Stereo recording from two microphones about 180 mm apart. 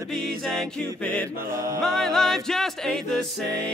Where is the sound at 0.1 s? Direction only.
5° left (ahead or behind).